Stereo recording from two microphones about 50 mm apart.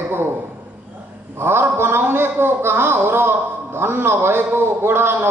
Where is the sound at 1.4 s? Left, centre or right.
Right.